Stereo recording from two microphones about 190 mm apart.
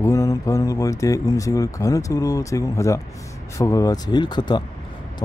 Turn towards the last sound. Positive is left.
turn(degrees=25)  # may be behind; listen again after turning